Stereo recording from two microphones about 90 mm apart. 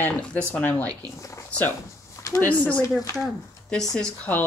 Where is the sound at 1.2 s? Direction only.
35° left (ahead or behind).